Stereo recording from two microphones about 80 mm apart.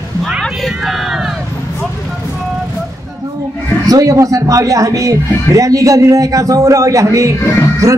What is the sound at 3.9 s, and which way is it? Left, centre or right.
Speech, right.